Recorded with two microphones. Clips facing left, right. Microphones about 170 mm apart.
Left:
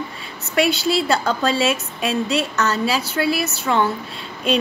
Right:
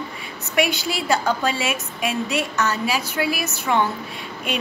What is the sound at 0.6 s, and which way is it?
A woman's voice, 15° right (ahead or behind).